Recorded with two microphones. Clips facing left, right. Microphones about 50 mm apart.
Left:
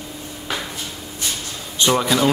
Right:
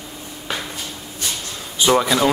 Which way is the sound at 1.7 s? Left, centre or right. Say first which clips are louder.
Right 1 dB; centre.